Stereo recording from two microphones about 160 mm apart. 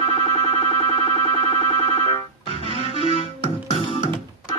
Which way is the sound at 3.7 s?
35° left (ahead or behind).